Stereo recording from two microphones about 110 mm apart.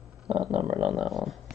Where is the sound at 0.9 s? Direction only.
Centre (ahead or behind).